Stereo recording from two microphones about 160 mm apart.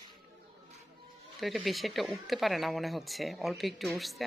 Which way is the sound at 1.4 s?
Centre (ahead or behind).